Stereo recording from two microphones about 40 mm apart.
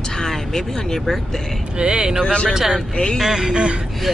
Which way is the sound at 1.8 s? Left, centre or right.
Right.